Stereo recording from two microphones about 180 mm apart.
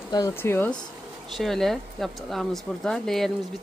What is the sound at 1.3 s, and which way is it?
Speech, centre (ahead or behind).